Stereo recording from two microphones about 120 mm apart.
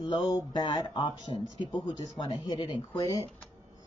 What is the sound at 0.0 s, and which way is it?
Speech, 50° left (ahead or behind).